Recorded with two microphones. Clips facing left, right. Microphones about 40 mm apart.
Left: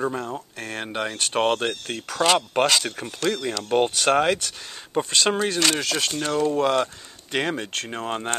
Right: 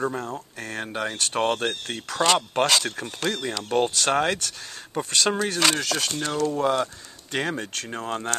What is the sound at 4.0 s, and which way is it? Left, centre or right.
Speech, left.